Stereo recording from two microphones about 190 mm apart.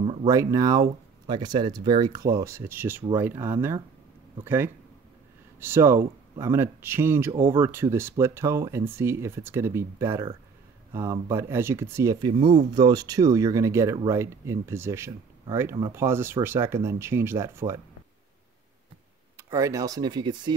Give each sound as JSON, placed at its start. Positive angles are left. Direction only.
{"t": 0.0, "sound": "a sound", "side_deg": -30}
{"t": 0.3, "sound": "speech", "side_deg": -15}
{"t": 5.6, "sound": "speech", "side_deg": -10}
{"t": 19.3, "sound": "speech", "side_deg": -15}